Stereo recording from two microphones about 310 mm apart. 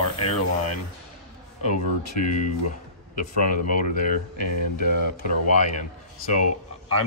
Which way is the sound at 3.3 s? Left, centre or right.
Left.